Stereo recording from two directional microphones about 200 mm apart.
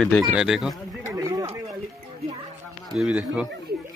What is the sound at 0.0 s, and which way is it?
Speech, centre (ahead or behind).